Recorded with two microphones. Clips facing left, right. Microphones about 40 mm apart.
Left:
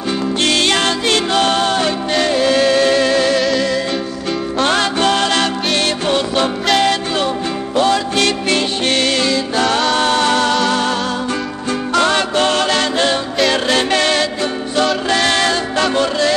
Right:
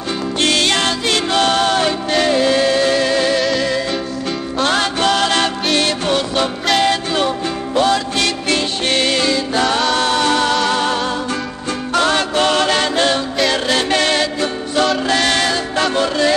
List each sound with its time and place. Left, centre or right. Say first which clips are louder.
0.8 s music: left 2 dB; left
1.3 s music: right 1 dB; centre
1.6 s music: even; centre
2.6 s music: left 2 dB; centre
4.6 s music: left 1 dB; centre
5.2 s music: even; centre
9.9 s music: left 1 dB; left
10.2 s music: left 1 dB; centre
12.1 s music: even; centre
15.0 s music: left 1 dB; centre
15.4 s music: left 2 dB; left
15.8 s music: even; centre